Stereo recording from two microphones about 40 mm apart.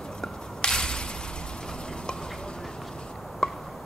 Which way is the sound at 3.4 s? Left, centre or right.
Centre.